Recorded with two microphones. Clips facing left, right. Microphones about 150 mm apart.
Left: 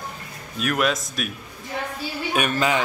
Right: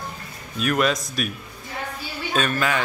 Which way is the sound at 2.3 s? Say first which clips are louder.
Left 1 dB; 20° left (ahead or behind).